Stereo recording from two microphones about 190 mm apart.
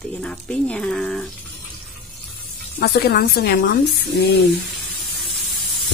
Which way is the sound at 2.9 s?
60° left (ahead or behind).